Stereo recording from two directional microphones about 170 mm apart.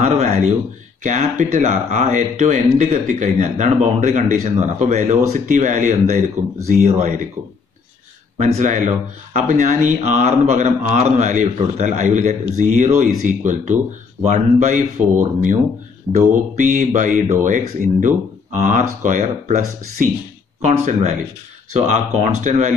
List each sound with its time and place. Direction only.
0.0 s a sound: 40° right (ahead or behind)
1.0 s speech: 45° right (ahead or behind)
8.4 s speech: 45° right (ahead or behind)
16.1 s speech: 45° right (ahead or behind)